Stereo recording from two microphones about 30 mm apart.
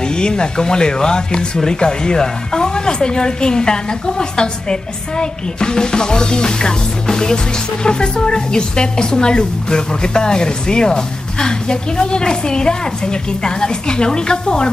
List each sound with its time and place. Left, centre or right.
0.1 s a woman's voice: left